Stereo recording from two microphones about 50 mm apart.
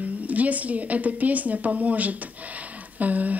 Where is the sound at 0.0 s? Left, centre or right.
Right.